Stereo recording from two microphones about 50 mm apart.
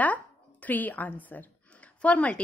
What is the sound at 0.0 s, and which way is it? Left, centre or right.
A woman's voice, left.